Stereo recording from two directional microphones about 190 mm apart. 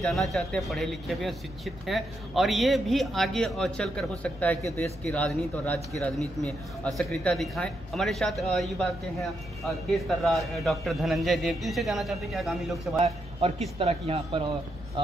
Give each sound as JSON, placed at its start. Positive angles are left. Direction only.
{"t": 0.0, "sound": "a man's voice", "side_deg": 0}
{"t": 13.0, "sound": "a man's voice", "side_deg": -35}